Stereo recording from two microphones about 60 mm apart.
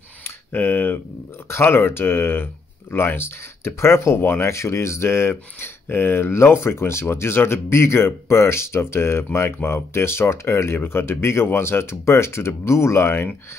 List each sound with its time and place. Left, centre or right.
0.5 s speech: left
4.5 s speech: left